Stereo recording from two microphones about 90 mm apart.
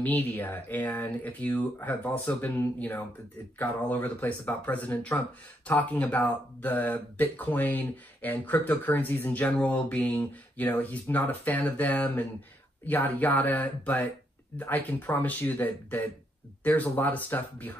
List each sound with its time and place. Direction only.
0.0 s speech: 20° left (ahead or behind)
2.2 s speech: 30° left (ahead or behind)
3.5 s speech: 20° left (ahead or behind)